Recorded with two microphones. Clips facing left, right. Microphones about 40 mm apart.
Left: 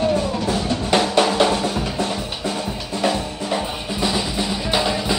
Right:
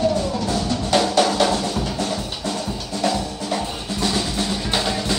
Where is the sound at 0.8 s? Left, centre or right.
Left.